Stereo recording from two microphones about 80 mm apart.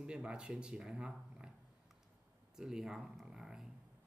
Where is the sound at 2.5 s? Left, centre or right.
Centre.